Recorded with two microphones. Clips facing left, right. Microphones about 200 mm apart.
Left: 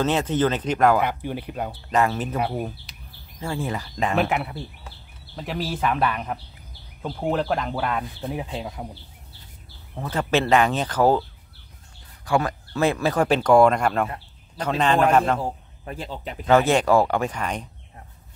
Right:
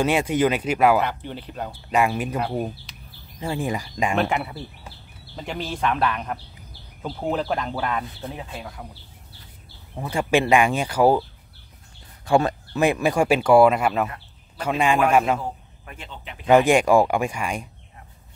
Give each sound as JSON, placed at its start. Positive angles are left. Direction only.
{"t": 0.0, "sound": "speech", "side_deg": -10}
{"t": 1.0, "sound": "speech", "side_deg": 10}
{"t": 1.7, "sound": "speech", "side_deg": -10}
{"t": 3.3, "sound": "speech", "side_deg": -15}
{"t": 4.2, "sound": "speech", "side_deg": 0}
{"t": 8.2, "sound": "speech", "side_deg": 15}
{"t": 9.9, "sound": "speech", "side_deg": -10}
{"t": 12.3, "sound": "speech", "side_deg": -25}
{"t": 15.4, "sound": "a man's voice", "side_deg": 35}
{"t": 16.4, "sound": "speech", "side_deg": -15}